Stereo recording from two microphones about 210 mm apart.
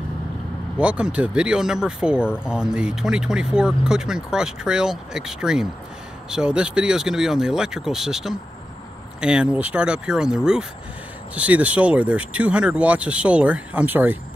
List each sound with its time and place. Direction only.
0.7 s speech: 5° right (ahead or behind)